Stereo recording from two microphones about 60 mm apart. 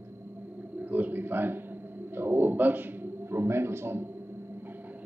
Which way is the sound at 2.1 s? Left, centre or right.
Right.